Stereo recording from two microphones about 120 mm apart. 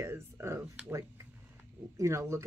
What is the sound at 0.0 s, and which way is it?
Speech, 25° right (ahead or behind).